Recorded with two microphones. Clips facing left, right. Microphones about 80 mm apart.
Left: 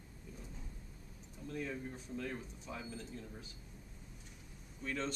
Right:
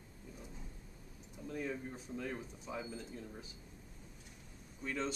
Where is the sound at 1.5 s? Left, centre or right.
Centre.